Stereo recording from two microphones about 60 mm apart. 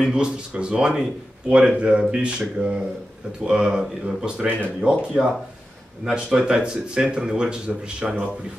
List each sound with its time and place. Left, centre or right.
0.1 s speech: centre